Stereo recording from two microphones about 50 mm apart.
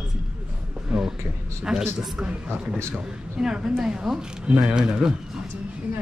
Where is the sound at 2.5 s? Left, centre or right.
Right.